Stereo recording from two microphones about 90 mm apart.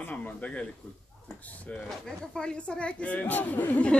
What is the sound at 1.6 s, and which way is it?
Speech, 10° left (ahead or behind).